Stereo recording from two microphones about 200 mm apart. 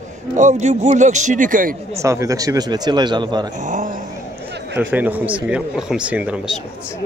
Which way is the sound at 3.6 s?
40° right (ahead or behind).